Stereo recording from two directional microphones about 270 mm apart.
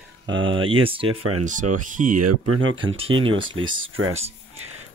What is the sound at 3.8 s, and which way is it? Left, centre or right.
Speech, right.